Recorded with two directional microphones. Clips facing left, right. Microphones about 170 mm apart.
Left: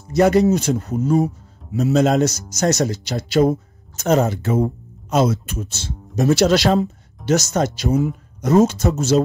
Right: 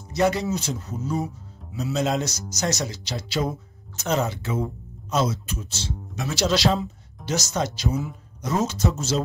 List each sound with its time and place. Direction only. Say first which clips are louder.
0.1 s speech: left 8 dB; 50° left (ahead or behind)